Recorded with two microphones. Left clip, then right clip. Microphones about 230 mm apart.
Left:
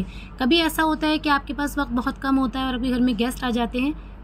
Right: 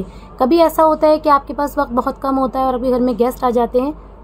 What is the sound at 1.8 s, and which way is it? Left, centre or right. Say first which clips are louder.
Speech: right 9 dB; left.